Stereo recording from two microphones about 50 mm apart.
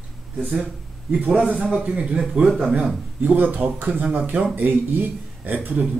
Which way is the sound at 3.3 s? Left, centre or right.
Right.